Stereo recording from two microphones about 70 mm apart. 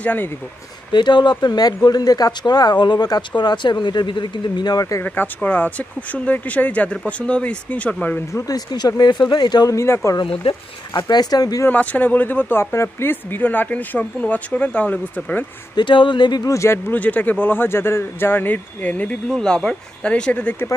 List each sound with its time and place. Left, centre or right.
0.0 s speech: left
0.9 s speech: left
5.0 s speech: left
8.5 s speech: left
9.7 s speech: left
11.1 s speech: left
11.7 s speech: left
15.7 s speech: left
16.4 s speech: left
16.9 s speech: left
19.2 s speech: centre